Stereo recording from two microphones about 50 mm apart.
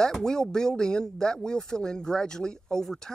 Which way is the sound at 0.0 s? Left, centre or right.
Centre.